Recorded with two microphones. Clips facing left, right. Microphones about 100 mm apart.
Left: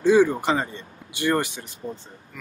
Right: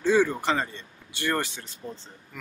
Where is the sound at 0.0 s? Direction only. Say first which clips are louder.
Left 5 dB; 15° left (ahead or behind).